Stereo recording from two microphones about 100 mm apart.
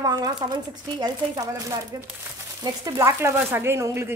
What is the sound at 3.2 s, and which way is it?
Speech, 25° right (ahead or behind).